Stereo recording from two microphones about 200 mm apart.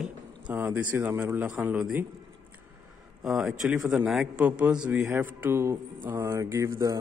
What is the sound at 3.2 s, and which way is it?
A man's voice, centre (ahead or behind).